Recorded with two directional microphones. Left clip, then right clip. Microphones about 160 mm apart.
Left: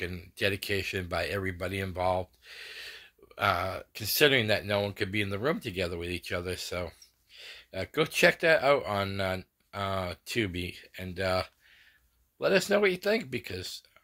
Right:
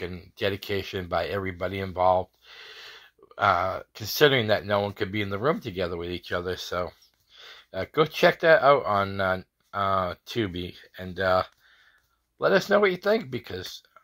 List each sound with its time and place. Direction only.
0.0 s speech: 20° left (ahead or behind)